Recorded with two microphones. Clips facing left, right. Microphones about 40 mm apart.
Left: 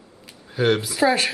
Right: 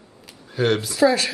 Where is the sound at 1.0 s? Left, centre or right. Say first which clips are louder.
Right 2 dB; left.